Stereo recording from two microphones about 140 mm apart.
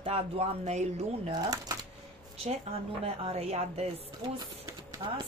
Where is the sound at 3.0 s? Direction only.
45° right (ahead or behind).